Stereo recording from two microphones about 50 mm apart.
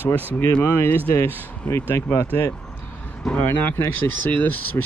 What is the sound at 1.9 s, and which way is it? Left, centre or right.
Speech, left.